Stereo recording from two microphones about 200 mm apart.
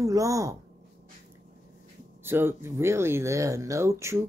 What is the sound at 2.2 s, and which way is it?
Speech, 10° right (ahead or behind).